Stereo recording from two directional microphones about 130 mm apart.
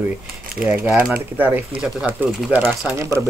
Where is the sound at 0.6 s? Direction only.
90° right.